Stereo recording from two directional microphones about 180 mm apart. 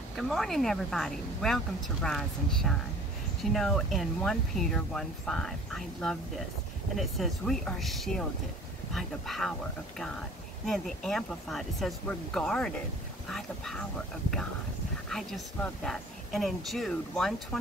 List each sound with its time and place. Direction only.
0.1 s speech: centre (ahead or behind)
10.6 s speech: centre (ahead or behind)
15.0 s speech: centre (ahead or behind)